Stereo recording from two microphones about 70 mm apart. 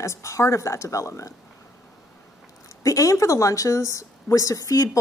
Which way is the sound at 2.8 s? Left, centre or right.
Left.